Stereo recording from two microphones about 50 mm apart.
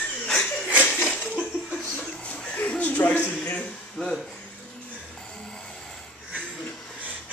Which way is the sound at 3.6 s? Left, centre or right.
Centre.